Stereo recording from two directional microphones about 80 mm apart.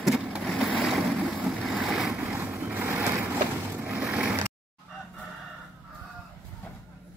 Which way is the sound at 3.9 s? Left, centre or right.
Centre.